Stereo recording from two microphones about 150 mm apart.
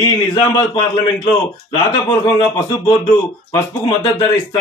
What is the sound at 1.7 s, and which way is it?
Speech, 25° left (ahead or behind).